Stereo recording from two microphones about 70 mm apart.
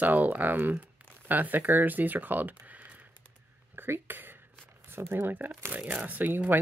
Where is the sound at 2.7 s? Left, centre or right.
Right.